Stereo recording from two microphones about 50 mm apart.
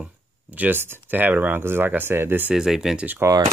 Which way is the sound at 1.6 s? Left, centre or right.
Right.